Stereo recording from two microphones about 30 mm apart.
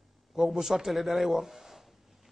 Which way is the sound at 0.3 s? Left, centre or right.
Centre.